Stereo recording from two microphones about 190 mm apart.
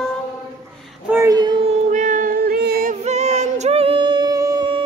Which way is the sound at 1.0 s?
15° right (ahead or behind).